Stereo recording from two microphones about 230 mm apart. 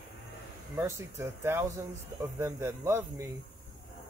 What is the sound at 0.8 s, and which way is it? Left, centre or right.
Speech, centre.